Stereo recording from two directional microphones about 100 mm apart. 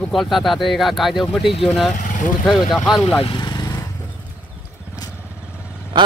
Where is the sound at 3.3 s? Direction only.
50° left (ahead or behind).